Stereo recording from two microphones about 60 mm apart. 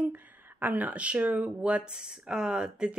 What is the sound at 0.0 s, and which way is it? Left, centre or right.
Speech, right.